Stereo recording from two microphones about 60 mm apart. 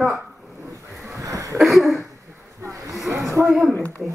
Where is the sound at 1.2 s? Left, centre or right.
Right.